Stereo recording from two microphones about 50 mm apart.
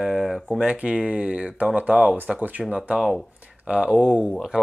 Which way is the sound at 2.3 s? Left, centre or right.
Right.